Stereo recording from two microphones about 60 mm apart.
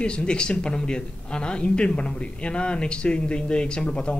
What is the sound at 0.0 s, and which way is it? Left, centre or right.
Speech, centre.